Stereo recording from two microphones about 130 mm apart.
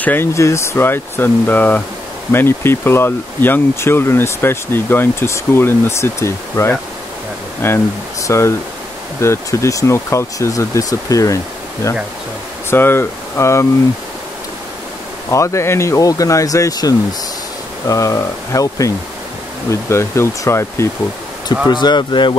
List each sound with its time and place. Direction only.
0.0 s speech: 15° left (ahead or behind)
15.2 s speech: 25° left (ahead or behind)
21.6 s speech: 35° left (ahead or behind)